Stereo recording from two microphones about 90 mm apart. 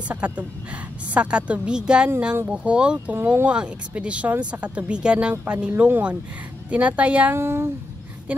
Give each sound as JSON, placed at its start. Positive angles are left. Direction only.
{"t": 0.1, "sound": "speech", "side_deg": -15}
{"t": 7.3, "sound": "speech", "side_deg": -30}
{"t": 8.3, "sound": "speech", "side_deg": -15}